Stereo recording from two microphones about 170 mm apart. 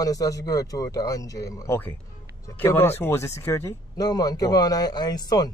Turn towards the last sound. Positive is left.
turn(degrees=25)  # may be behind; listen again after turning